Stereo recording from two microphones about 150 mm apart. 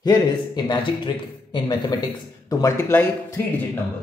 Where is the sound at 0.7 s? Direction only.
30° left (ahead or behind).